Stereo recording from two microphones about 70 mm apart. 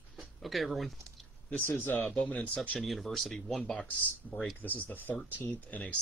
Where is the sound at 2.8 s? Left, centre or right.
Centre.